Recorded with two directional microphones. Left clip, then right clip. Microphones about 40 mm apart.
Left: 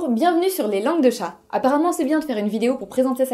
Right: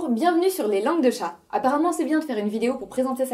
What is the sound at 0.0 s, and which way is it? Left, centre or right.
A woman's voice, left.